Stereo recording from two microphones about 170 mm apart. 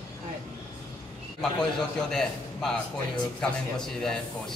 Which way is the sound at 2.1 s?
5° left (ahead or behind).